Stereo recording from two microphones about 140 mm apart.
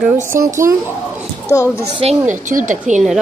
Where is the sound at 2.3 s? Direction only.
65° right (ahead or behind).